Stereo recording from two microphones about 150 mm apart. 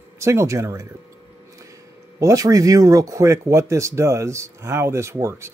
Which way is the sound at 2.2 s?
20° right (ahead or behind).